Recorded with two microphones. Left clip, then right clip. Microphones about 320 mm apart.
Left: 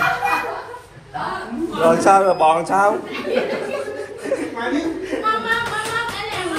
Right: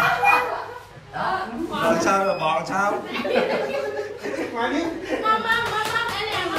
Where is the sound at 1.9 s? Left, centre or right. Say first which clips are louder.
Left 7 dB; centre.